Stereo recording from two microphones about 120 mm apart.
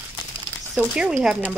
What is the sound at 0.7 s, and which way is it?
Speech, 5° right (ahead or behind).